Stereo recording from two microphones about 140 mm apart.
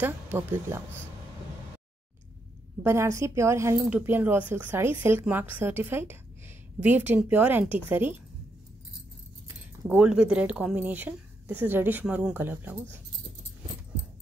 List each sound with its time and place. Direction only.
0.0 s speech: 15° right (ahead or behind)
2.8 s a woman's voice: 20° right (ahead or behind)
9.5 s speech: 10° right (ahead or behind)